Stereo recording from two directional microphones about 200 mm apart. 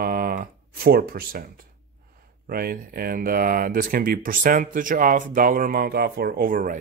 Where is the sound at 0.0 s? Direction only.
45° right (ahead or behind).